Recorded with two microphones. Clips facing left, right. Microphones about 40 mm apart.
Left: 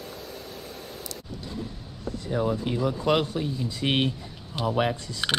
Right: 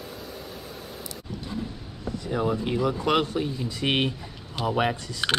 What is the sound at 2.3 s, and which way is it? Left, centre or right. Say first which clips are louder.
Speech: right 1 dB; right.